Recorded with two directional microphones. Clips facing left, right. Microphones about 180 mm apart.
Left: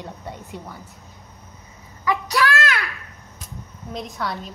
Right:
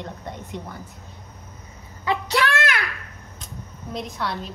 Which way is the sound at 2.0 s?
20° right (ahead or behind).